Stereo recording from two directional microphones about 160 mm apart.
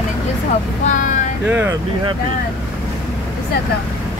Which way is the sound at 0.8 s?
50° left (ahead or behind).